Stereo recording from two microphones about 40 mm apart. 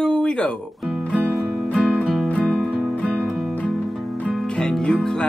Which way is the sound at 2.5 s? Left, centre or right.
Centre.